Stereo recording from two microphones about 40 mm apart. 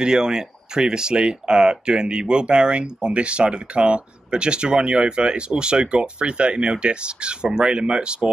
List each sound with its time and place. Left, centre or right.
0.0 s speech: centre